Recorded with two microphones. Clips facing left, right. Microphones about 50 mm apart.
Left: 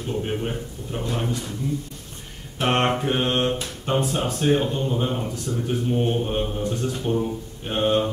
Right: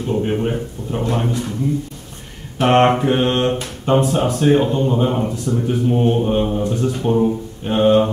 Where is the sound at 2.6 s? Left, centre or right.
Right.